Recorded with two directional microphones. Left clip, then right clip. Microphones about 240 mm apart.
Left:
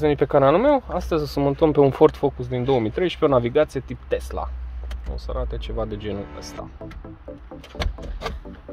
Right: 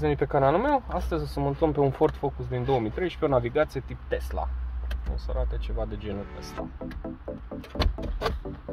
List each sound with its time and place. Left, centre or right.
0.0 s speech: left